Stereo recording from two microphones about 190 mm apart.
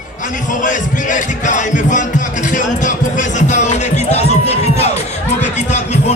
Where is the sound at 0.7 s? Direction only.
40° left (ahead or behind).